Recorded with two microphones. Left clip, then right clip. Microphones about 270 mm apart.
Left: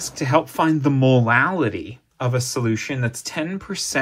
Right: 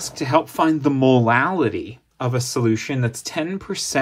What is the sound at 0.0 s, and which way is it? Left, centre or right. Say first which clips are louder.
Speech: even; centre.